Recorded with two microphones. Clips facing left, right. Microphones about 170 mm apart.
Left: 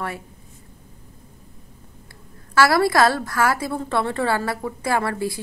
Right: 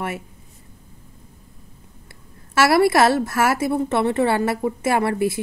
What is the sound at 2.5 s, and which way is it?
A woman's voice, 25° right (ahead or behind).